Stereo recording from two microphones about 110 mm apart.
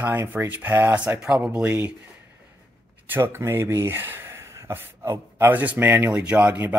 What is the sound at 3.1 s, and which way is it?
Speech, 20° right (ahead or behind).